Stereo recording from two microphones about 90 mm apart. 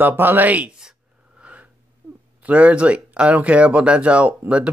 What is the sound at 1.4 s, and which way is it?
Wheeze, 15° right (ahead or behind).